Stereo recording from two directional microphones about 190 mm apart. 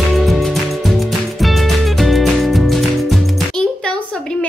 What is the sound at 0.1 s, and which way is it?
Music, centre (ahead or behind).